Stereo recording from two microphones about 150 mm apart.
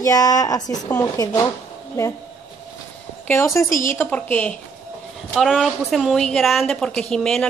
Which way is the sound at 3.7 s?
60° left (ahead or behind).